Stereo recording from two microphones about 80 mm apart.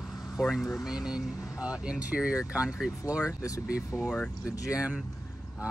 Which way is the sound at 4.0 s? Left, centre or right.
Centre.